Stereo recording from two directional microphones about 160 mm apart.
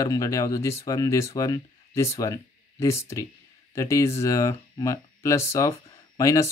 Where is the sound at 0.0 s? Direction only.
20° left (ahead or behind).